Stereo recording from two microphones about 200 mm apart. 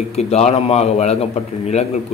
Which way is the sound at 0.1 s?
30° left (ahead or behind).